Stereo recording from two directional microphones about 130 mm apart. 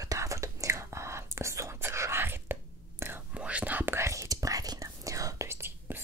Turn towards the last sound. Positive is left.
turn(degrees=-20)  # may be behind; listen again after turning